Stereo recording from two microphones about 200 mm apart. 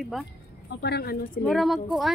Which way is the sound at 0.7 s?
55° left (ahead or behind).